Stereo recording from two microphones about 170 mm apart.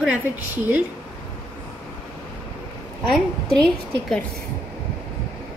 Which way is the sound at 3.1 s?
5° left (ahead or behind).